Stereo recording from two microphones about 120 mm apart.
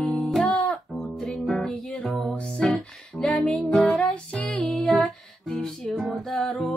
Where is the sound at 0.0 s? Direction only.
10° left (ahead or behind).